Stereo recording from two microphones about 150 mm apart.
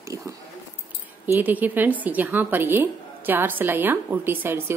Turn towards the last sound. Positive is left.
turn(degrees=-15)  # may be behind; listen again after turning